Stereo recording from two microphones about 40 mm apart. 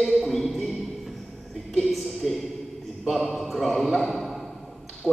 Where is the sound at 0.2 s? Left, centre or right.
Centre.